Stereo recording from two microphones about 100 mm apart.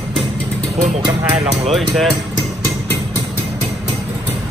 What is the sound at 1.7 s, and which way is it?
Speech, centre (ahead or behind).